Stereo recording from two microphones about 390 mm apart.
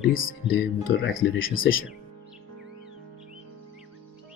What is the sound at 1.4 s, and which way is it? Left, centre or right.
Speech, left.